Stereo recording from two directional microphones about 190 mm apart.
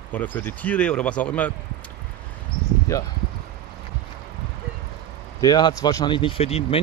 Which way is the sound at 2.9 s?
15° left (ahead or behind).